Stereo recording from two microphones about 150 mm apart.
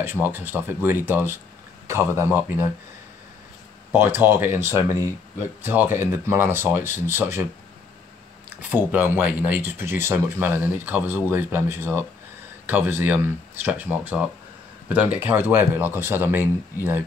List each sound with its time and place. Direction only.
0.0 s speech: 15° right (ahead or behind)
3.9 s speech: 15° right (ahead or behind)
8.5 s speech: 10° right (ahead or behind)